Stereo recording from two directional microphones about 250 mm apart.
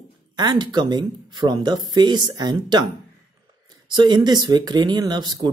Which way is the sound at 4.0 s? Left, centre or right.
Centre.